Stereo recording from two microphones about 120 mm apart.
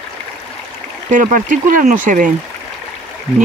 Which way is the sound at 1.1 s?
90° right.